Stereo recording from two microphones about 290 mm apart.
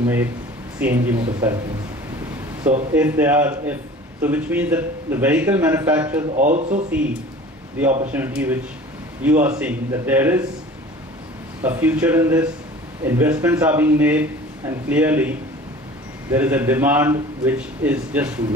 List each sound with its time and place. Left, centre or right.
0.0 s a man's voice: centre
2.9 s a man's voice: centre
6.3 s speech: right
8.1 s a man's voice: centre
11.6 s a man's voice: centre